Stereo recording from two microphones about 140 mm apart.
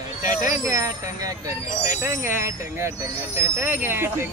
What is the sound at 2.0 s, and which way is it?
Speech, 20° right (ahead or behind).